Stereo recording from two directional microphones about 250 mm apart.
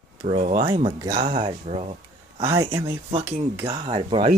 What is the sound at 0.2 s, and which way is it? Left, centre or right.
Speech, right.